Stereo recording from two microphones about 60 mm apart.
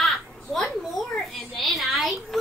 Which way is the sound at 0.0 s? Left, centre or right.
Centre.